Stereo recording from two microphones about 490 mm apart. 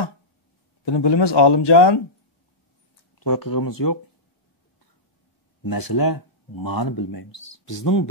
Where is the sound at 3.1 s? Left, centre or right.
Left.